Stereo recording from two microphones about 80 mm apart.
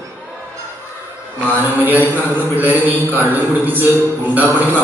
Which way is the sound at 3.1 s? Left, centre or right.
Right.